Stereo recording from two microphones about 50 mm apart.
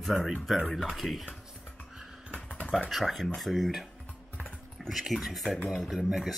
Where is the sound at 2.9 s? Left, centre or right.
Centre.